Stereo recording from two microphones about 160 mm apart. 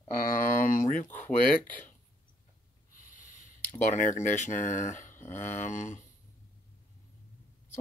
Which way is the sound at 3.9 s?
50° left (ahead or behind).